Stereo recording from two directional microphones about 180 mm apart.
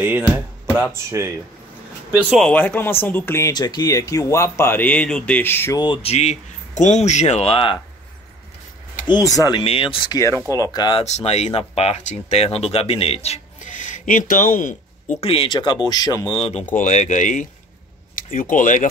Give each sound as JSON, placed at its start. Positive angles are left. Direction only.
{"t": 0.0, "sound": "speech", "side_deg": -10}
{"t": 2.1, "sound": "speech", "side_deg": 0}
{"t": 5.8, "sound": "speech", "side_deg": 30}
{"t": 9.0, "sound": "speech", "side_deg": 20}
{"t": 11.1, "sound": "speech", "side_deg": 35}
{"t": 16.3, "sound": "speech", "side_deg": 35}